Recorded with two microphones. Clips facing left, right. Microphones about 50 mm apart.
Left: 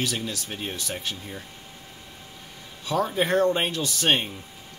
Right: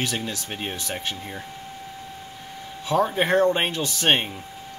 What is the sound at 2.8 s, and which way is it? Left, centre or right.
Speech, right.